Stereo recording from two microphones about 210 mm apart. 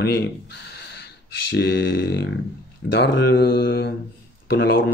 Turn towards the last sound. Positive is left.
turn(degrees=50)  # may be behind; listen again after turning